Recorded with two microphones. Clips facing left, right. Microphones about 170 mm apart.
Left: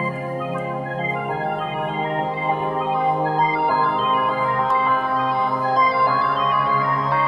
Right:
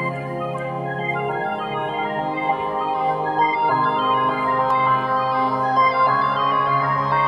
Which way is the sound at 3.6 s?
Centre (ahead or behind).